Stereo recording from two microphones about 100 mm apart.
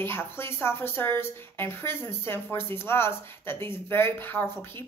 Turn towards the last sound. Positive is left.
turn(degrees=20)  # may be behind; listen again after turning